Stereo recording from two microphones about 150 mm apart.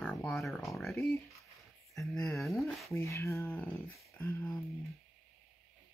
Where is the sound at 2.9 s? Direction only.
20° left (ahead or behind).